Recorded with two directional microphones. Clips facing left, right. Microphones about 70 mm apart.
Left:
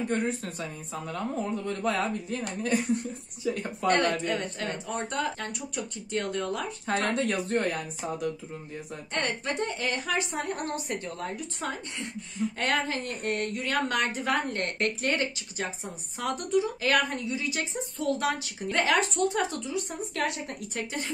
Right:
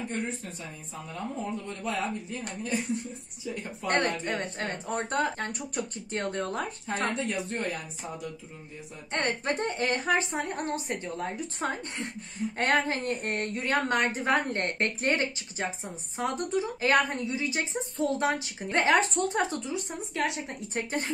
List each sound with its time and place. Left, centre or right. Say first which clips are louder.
0.1 s speech: left 5 dB; left
1.7 s speech: left 5 dB; left
3.4 s speech: left 6 dB; left
3.8 s a woman's voice: left 3 dB; right
6.9 s speech: left 4 dB; left
9.1 s a woman's voice: right 2 dB; right
11.6 s a woman's voice: right 3 dB; right; by 20.5 s centre
20.7 s a woman's voice: right 3 dB; right